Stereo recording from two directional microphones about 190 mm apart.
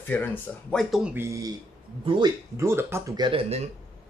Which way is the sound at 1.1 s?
15° right (ahead or behind).